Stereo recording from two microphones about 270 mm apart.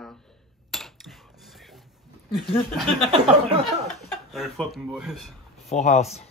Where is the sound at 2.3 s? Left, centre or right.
Centre.